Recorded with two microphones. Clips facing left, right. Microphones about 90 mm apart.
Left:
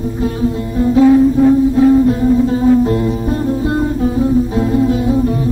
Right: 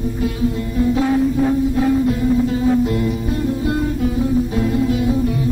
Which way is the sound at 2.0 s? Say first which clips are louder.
Left 5 dB; 35° left (ahead or behind).